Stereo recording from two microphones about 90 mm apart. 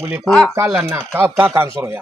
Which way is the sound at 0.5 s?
30° right (ahead or behind).